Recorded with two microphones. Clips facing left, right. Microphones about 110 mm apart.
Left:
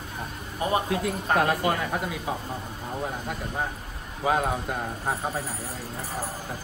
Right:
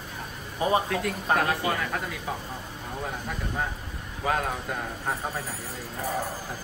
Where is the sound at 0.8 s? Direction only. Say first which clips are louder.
Left 1 dB; 15° left (ahead or behind).